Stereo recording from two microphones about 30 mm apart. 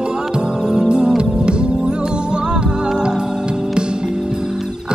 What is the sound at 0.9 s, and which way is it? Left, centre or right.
Music, right.